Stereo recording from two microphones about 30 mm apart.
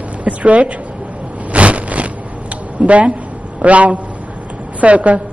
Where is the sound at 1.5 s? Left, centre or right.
Right.